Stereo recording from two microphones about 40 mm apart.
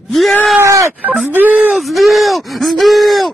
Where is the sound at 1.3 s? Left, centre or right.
Right.